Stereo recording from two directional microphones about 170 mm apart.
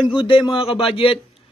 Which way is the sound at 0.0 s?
30° left (ahead or behind).